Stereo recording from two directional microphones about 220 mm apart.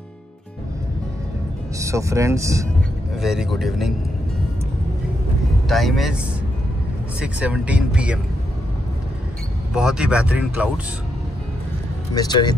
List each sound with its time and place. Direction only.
1.8 s speech: 15° right (ahead or behind)
3.2 s speech: centre (ahead or behind)
5.7 s speech: centre (ahead or behind)
7.2 s speech: 5° right (ahead or behind)
9.8 s speech: 5° right (ahead or behind)
12.1 s speech: 20° left (ahead or behind)